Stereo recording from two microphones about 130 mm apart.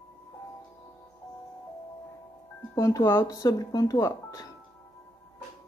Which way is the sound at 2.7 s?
25° left (ahead or behind).